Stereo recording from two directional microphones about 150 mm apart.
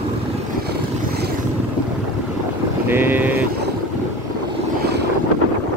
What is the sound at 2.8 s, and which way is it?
Boat, 15° right (ahead or behind).